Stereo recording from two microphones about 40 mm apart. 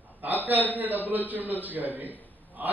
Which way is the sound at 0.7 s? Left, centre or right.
Right.